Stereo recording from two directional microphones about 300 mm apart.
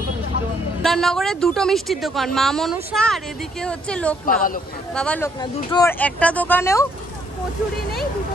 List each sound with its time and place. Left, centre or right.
0.8 s speech: centre
4.3 s speech: left
4.9 s speech: centre